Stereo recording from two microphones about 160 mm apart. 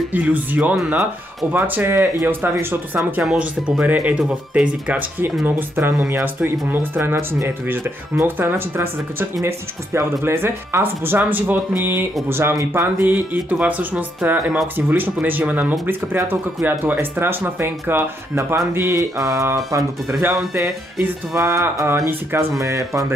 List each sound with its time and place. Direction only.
0.1 s speech: 10° right (ahead or behind)
9.9 s speech: 15° right (ahead or behind)